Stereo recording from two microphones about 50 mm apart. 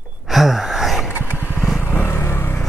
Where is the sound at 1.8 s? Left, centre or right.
Left.